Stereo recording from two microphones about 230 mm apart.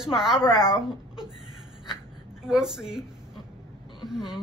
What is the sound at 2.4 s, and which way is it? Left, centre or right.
A woman's voice, centre.